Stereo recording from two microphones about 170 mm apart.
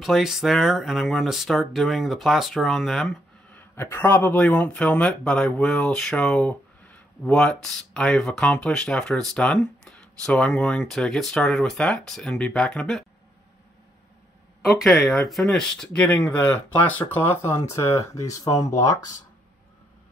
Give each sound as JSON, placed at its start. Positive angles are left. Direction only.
{"t": 0.0, "sound": "speech", "side_deg": 0}
{"t": 3.7, "sound": "speech", "side_deg": 15}
{"t": 14.6, "sound": "speech", "side_deg": 0}